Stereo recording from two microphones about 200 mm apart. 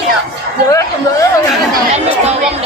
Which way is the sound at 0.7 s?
15° left (ahead or behind).